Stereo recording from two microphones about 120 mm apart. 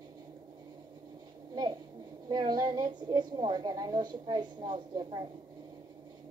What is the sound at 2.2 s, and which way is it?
A woman's voice, 35° right (ahead or behind).